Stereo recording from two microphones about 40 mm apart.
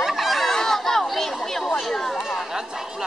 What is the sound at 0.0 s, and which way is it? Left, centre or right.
Chatter, centre.